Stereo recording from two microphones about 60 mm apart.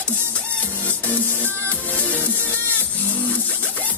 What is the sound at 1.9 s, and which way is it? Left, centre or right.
Music, left.